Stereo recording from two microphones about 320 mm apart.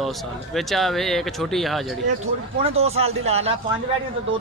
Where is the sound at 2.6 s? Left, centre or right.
Centre.